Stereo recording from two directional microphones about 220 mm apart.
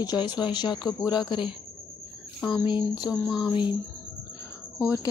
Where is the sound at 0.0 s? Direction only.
20° left (ahead or behind).